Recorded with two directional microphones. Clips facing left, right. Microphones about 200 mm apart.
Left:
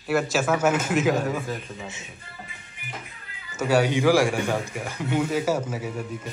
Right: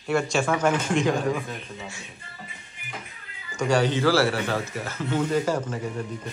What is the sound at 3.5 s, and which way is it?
A man's voice, 5° left (ahead or behind).